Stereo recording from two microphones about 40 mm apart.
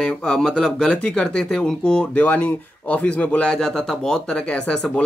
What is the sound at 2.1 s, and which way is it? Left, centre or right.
Speech, left.